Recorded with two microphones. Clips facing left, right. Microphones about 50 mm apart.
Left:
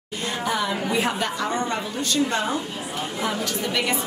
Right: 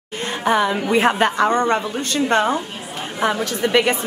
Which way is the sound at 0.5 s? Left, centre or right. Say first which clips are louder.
Right 8 dB; right.